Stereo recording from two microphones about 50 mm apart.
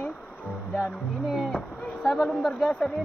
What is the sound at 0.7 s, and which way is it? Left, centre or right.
A man's voice, centre.